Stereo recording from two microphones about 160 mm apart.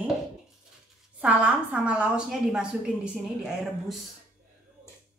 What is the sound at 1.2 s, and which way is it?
A woman's voice, 10° right (ahead or behind).